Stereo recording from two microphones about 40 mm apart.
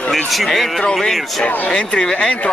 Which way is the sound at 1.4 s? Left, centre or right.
Left.